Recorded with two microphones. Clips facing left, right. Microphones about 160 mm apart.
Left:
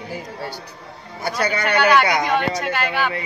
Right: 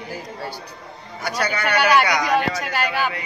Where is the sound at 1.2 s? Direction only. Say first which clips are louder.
Left 2 dB; 30° left (ahead or behind).